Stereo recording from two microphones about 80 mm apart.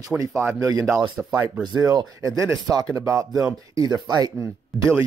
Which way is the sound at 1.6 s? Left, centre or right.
Right.